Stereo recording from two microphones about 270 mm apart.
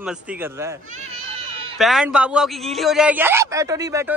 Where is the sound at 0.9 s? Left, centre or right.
Right.